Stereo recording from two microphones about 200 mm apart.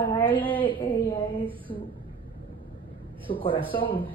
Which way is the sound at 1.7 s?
30° left (ahead or behind).